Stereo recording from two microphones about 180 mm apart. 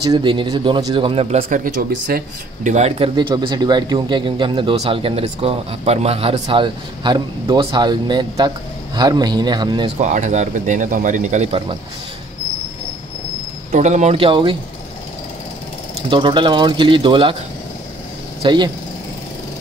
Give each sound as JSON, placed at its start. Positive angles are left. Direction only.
{"t": 0.1, "sound": "speech", "side_deg": -25}
{"t": 2.7, "sound": "speech", "side_deg": -35}
{"t": 3.2, "sound": "speech", "side_deg": -25}
{"t": 9.9, "sound": "a man's voice", "side_deg": -40}
{"t": 13.7, "sound": "speech", "side_deg": -40}
{"t": 16.1, "sound": "speech", "side_deg": -25}
{"t": 18.4, "sound": "speech", "side_deg": -25}